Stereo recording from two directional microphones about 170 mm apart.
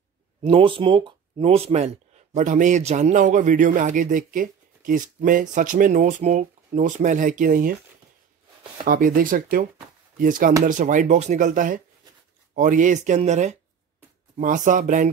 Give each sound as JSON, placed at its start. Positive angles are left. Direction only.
{"t": 0.5, "sound": "speech", "side_deg": -30}
{"t": 8.8, "sound": "speech", "side_deg": -55}